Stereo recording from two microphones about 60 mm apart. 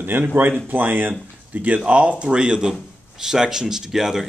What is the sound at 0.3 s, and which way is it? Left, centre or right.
A man's voice, right.